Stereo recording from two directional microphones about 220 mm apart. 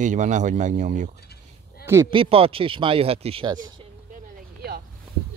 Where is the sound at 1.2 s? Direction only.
45° left (ahead or behind).